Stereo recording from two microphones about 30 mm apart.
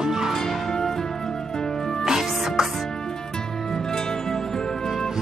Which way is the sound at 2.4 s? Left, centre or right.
Centre.